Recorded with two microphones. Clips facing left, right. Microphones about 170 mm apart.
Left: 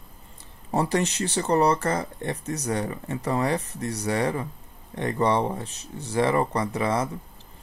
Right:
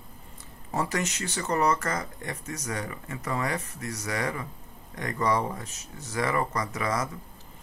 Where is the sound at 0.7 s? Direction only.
35° left (ahead or behind).